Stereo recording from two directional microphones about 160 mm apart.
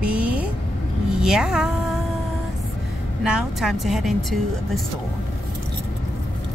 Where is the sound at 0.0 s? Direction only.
10° right (ahead or behind).